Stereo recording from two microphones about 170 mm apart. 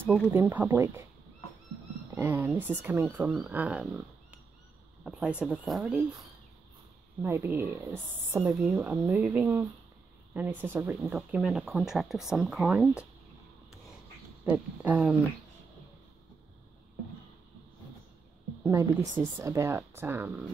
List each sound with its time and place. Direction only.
0.3 s speech: 10° right (ahead or behind)
2.1 s speech: 15° right (ahead or behind)
7.2 s speech: 15° right (ahead or behind)
14.4 s speech: 10° right (ahead or behind)
18.6 s speech: 15° right (ahead or behind)